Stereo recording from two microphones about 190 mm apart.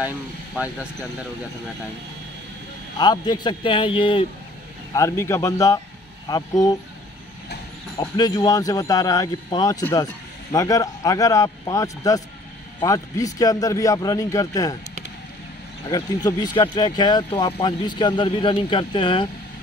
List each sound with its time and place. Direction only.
3.0 s speech: 20° left (ahead or behind)
4.9 s a man's voice: 15° left (ahead or behind)
8.0 s a man's voice: 20° left (ahead or behind)
15.9 s speech: 20° left (ahead or behind)